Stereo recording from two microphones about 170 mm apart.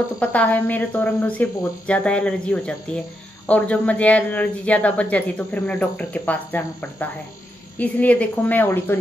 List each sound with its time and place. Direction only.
0.2 s speech: 10° left (ahead or behind)